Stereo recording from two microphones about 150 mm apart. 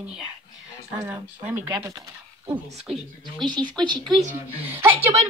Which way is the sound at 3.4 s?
30° right (ahead or behind).